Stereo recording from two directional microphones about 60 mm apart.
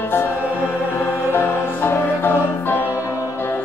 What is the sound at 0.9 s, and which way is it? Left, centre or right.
Music, left.